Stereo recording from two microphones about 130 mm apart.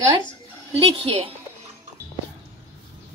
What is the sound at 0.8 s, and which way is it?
Speech, 50° right (ahead or behind).